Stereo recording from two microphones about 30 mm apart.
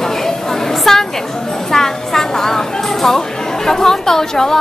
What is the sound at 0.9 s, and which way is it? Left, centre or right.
Speech, centre.